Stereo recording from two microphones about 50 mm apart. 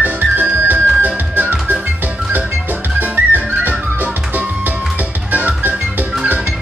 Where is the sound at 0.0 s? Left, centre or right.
Right.